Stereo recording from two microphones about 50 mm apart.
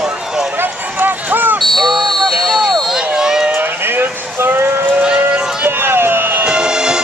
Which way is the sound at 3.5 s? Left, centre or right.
Right.